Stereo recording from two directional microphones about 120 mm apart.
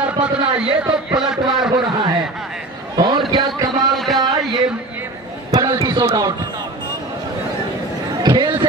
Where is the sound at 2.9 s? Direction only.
35° right (ahead or behind).